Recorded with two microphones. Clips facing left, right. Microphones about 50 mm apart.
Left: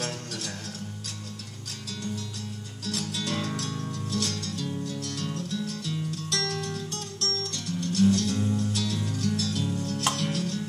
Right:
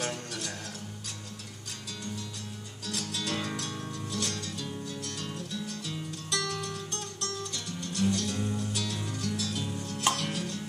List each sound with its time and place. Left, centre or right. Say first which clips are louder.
0.0 s music: left 1 dB; centre
2.8 s music: left 3 dB; centre